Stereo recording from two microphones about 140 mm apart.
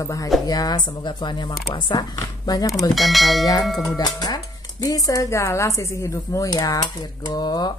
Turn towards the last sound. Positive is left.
turn(degrees=30)  # may be behind; listen again after turning